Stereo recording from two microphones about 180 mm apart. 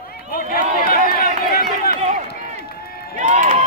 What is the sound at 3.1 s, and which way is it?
Crowd, 45° right (ahead or behind).